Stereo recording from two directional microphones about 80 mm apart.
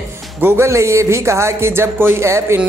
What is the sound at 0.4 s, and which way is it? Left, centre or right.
Speech, right.